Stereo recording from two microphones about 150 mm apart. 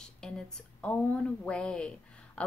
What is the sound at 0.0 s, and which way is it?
A woman's voice, 5° left (ahead or behind).